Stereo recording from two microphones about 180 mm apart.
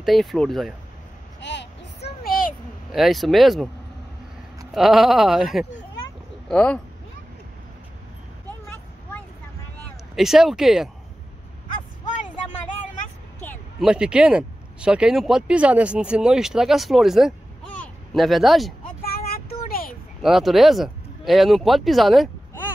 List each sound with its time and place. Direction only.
0.0 s speech: centre (ahead or behind)
1.4 s a sound: 75° left (ahead or behind); by 2.5 s 55° left (ahead or behind)
2.9 s speech: centre (ahead or behind)
4.7 s speech: centre (ahead or behind)
10.1 s speech: centre (ahead or behind)
13.7 s speech: 5° right (ahead or behind)
17.7 s a sound: centre (ahead or behind)
19.0 s a sound: 55° left (ahead or behind)
20.2 s speech: centre (ahead or behind)